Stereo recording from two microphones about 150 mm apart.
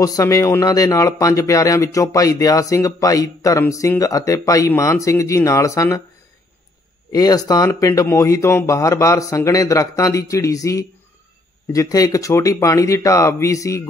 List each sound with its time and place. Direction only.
0.0 s speech: 25° left (ahead or behind)
7.1 s speech: 25° left (ahead or behind)